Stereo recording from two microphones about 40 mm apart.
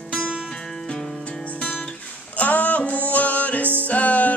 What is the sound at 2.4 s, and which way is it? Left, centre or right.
Music, left.